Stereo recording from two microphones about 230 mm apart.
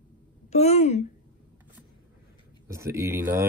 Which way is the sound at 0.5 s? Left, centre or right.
Left.